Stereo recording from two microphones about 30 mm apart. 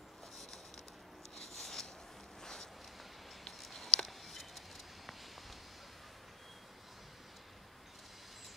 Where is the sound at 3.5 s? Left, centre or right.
Centre.